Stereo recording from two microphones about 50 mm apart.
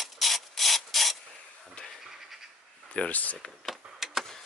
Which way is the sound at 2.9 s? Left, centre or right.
Left.